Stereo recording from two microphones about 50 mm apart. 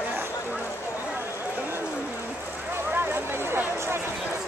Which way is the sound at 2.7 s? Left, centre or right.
Right.